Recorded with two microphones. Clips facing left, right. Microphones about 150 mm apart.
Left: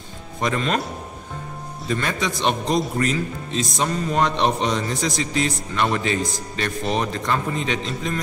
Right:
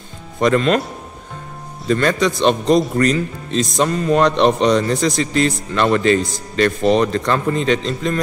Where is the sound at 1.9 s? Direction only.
85° right.